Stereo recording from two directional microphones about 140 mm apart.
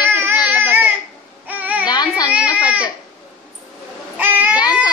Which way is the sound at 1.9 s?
30° left (ahead or behind).